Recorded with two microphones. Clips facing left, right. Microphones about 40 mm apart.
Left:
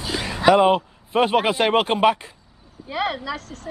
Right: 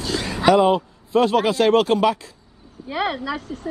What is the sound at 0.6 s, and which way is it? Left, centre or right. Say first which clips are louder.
Speech: even; left.